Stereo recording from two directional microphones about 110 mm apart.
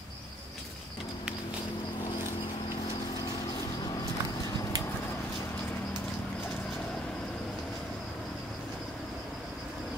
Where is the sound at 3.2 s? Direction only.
35° left (ahead or behind); by 5.8 s 20° left (ahead or behind).